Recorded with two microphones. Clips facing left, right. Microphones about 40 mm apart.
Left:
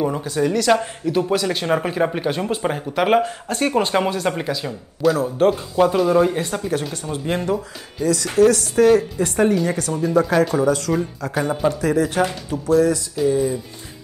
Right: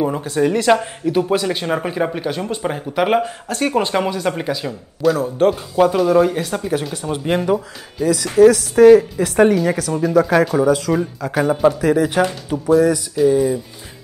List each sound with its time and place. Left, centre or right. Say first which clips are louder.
0.2 s speech: right 3 dB; right
0.7 s speech: right 2 dB; centre